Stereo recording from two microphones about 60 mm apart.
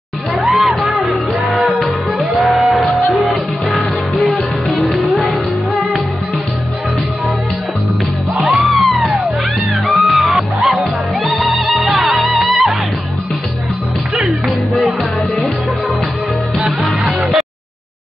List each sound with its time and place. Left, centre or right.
0.3 s music: centre
4.7 s music: centre
8.6 s music: centre
14.4 s music: centre
16.6 s music: right